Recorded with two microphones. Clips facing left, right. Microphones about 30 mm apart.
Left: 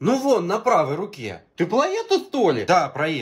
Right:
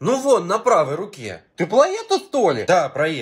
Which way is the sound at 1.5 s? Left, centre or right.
Right.